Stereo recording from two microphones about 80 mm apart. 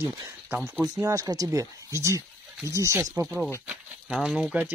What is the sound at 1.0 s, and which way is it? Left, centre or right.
Speech, right.